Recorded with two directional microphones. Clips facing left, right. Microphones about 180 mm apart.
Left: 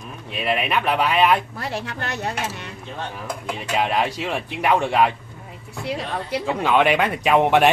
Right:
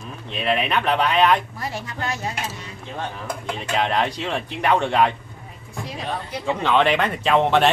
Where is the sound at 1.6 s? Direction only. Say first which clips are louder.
Left 1 dB; 65° left (ahead or behind).